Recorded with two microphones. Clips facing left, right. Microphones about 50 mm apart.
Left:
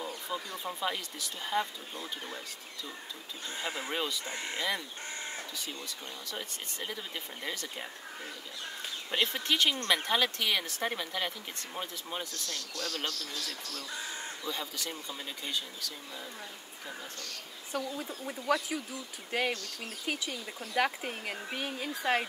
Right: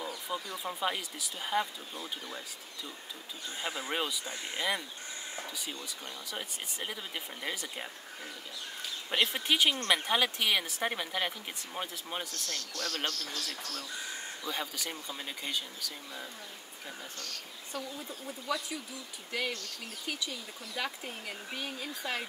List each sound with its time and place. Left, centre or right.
0.3 s a sound: centre
0.7 s speech: centre
3.9 s speech: centre
6.3 s speech: centre
9.1 s speech: centre
12.4 s speech: right
14.5 s speech: centre
17.7 s speech: left